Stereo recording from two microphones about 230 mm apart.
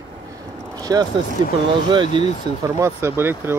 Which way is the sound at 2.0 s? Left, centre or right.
Left.